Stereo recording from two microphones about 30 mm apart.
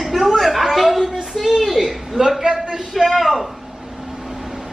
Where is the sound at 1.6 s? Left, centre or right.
Centre.